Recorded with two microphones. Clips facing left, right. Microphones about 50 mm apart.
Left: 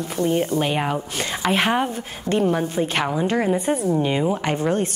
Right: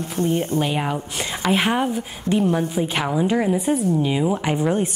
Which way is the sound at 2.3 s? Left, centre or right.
Left.